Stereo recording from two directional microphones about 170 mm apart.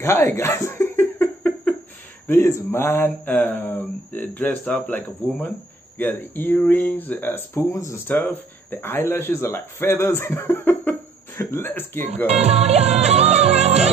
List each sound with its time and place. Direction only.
0.0 s laughter: 15° left (ahead or behind)
2.2 s speech: 15° left (ahead or behind)
12.3 s music: 40° right (ahead or behind)